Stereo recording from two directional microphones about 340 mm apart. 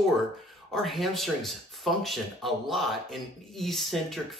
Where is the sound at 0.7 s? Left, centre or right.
Centre.